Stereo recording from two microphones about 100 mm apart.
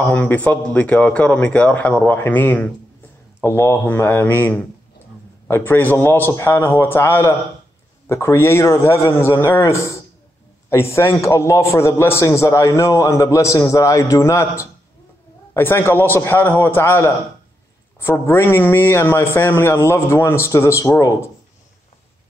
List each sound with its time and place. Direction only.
0.1 s a man's voice: 15° left (ahead or behind); by 21.3 s 30° left (ahead or behind)